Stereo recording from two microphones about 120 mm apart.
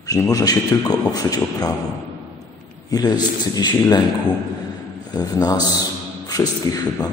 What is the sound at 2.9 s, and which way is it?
A man's voice, 35° left (ahead or behind).